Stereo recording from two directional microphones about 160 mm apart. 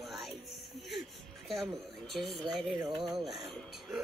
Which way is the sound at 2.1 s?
Centre (ahead or behind).